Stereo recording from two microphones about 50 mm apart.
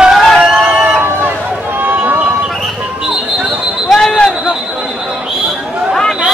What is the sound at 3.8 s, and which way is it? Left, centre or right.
Basketball bounce, centre.